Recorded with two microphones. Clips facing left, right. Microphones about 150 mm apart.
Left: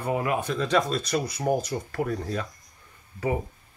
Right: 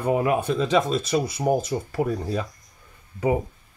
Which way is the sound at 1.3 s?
25° right (ahead or behind).